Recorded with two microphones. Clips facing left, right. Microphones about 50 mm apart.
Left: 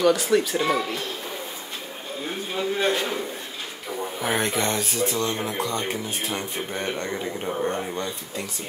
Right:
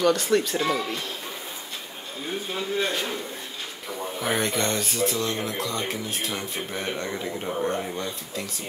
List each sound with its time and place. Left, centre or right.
0.0 s speech: centre
2.8 s a man's voice: centre
4.0 s speech: centre